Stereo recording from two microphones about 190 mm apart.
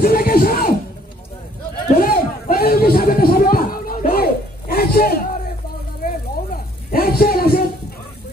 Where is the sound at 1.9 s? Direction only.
50° left (ahead or behind).